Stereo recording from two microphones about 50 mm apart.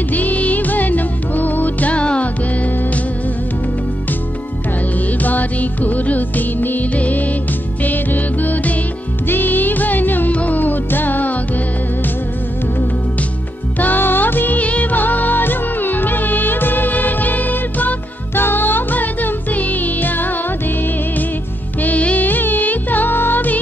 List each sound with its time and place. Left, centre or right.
0.1 s music: left
4.9 s music: left
13.7 s music: left
21.8 s music: left